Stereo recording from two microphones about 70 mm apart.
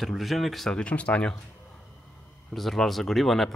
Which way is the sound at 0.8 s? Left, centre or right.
Centre.